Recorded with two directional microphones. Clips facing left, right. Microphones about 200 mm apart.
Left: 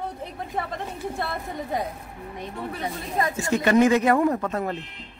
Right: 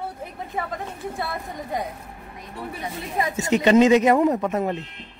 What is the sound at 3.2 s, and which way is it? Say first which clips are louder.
Speech: right 2 dB; 20° right (ahead or behind).